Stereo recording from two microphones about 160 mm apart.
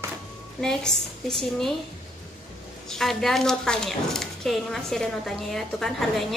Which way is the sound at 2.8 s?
5° left (ahead or behind).